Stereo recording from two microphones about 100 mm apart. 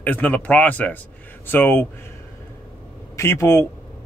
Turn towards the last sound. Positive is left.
turn(degrees=25)  # may be behind; listen again after turning